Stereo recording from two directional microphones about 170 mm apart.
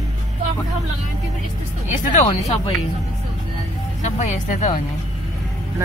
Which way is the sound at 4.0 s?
45° left (ahead or behind).